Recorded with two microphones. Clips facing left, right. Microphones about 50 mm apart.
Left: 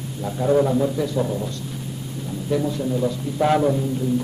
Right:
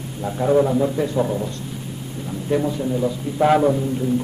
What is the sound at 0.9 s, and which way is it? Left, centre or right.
Speech, right.